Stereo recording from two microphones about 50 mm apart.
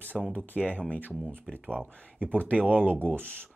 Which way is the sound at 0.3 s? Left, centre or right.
Left.